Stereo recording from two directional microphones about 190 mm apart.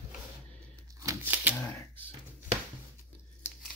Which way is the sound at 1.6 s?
10° left (ahead or behind).